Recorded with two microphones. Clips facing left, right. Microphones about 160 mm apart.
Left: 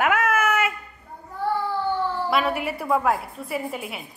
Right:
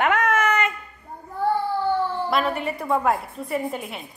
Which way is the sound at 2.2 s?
5° left (ahead or behind).